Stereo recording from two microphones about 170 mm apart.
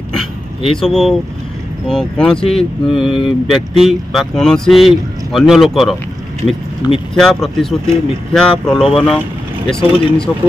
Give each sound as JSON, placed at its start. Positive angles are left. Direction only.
{"t": 0.7, "sound": "speech", "side_deg": 0}